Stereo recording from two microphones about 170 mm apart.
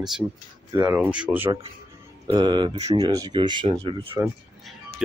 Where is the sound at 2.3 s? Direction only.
25° right (ahead or behind).